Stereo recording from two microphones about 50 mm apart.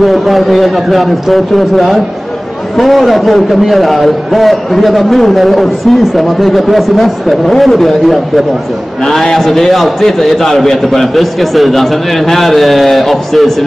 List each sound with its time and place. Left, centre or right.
0.0 s a man's voice: centre